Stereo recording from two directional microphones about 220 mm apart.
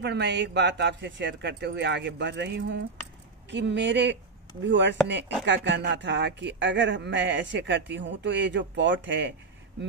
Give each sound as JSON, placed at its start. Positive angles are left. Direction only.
{"t": 0.0, "sound": "a woman's voice", "side_deg": -50}